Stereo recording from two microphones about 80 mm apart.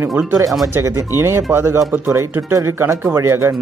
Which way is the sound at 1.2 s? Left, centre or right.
Right.